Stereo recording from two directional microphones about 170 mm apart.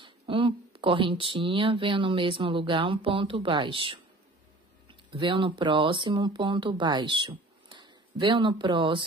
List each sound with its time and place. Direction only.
0.0 s speech: 30° right (ahead or behind)